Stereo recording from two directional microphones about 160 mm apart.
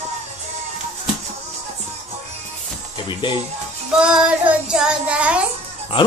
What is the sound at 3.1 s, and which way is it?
Speech, 30° left (ahead or behind).